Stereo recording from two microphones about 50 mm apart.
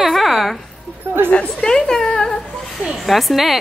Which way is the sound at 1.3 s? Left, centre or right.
Centre.